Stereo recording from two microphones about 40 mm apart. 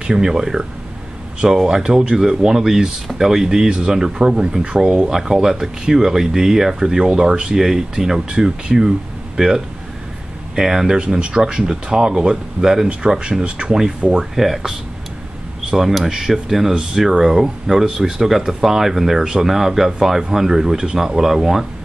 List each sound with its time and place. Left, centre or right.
0.0 s speech: centre
7.5 s speech: centre
11.1 s speech: right
14.3 s speech: centre
21.2 s speech: centre